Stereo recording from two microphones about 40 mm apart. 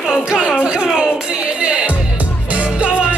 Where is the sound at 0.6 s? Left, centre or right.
Right.